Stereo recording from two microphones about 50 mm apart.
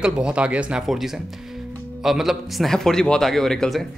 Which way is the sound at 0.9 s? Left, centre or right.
Centre.